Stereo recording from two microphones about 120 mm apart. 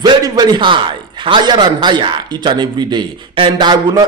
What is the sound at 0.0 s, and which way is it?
A man's voice, 35° right (ahead or behind).